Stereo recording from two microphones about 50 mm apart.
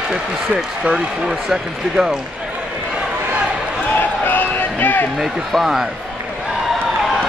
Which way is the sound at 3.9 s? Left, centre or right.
Left.